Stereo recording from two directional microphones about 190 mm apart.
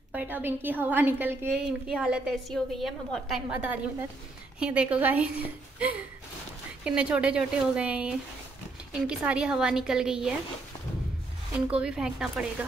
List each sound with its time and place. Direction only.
0.1 s a woman's voice: 10° right (ahead or behind)
11.7 s a woman's voice: 5° right (ahead or behind)